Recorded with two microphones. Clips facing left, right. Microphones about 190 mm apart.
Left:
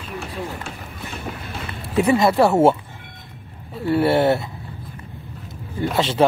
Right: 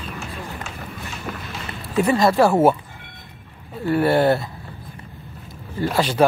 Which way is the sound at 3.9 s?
20° left (ahead or behind).